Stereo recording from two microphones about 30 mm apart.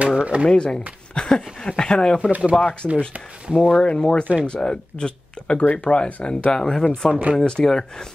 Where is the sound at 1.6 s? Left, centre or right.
Left.